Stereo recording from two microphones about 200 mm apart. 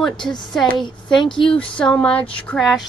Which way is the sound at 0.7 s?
20° left (ahead or behind).